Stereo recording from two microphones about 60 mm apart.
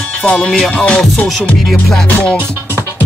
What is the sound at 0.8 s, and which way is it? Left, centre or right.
Music, centre.